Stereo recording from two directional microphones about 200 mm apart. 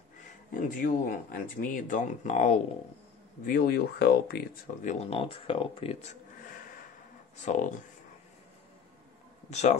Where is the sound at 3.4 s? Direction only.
50° left (ahead or behind).